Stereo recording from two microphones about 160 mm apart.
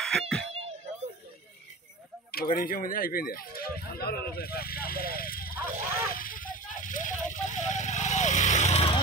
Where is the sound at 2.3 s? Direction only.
65° left (ahead or behind).